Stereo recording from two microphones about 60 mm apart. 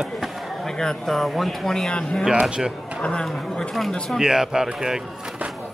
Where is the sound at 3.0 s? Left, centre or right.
Centre.